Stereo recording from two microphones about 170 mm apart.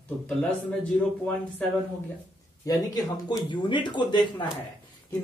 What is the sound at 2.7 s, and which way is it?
Speech, 20° left (ahead or behind).